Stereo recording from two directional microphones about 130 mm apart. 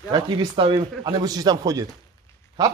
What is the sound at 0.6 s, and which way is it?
A man's voice, 40° right (ahead or behind).